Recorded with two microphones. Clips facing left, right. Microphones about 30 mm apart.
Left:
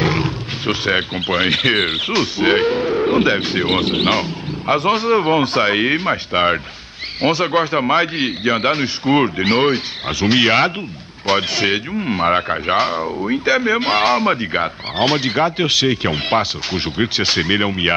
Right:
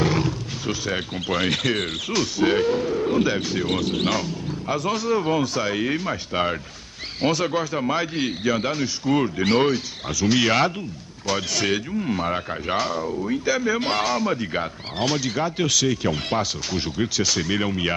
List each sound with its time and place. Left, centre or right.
0.0 s speech: left